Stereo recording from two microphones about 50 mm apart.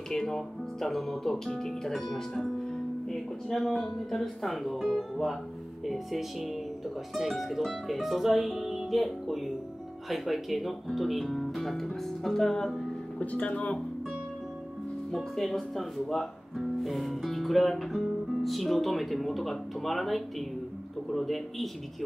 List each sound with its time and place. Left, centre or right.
0.1 s speech: centre
13.2 s speech: left
15.0 s speech: centre